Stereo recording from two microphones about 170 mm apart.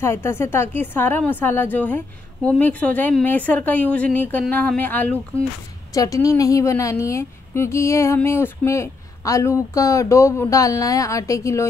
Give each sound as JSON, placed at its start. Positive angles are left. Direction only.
{"t": 0.0, "sound": "a woman's voice", "side_deg": 15}